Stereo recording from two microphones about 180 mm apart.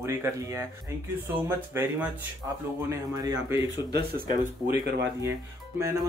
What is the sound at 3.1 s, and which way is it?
Speech, 15° right (ahead or behind).